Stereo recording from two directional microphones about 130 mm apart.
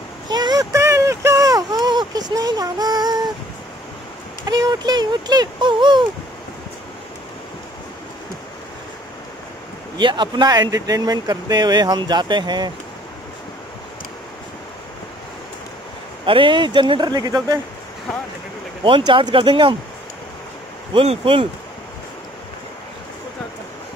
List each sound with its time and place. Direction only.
0.3 s a sound: 30° right (ahead or behind)
4.5 s speech: 35° right (ahead or behind)
9.9 s speech: 35° right (ahead or behind)
16.3 s speech: 40° right (ahead or behind)
18.9 s speech: 40° right (ahead or behind)
20.9 s speech: 45° right (ahead or behind)